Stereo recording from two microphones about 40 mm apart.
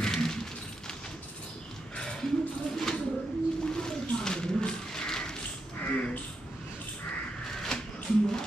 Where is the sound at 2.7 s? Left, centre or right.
Centre.